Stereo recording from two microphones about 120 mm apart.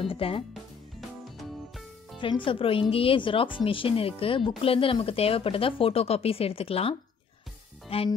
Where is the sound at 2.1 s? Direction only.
45° left (ahead or behind).